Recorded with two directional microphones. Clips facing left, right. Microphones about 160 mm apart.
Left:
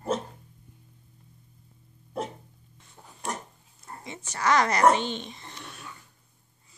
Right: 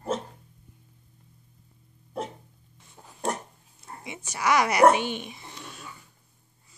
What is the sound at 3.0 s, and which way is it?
Dog, 5° right (ahead or behind).